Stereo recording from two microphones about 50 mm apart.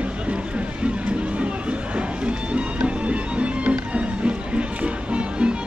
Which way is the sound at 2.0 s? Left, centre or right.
Right.